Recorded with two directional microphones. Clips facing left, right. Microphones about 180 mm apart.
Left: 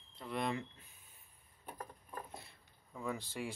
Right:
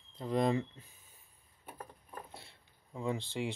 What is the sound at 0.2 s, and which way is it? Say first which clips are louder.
Speech: right 8 dB; 35° right (ahead or behind).